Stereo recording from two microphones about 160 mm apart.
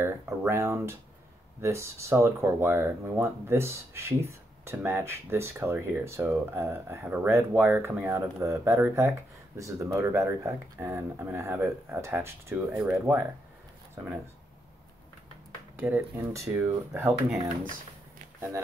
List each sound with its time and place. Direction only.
0.0 s speech: 15° right (ahead or behind)
15.7 s speech: 15° right (ahead or behind)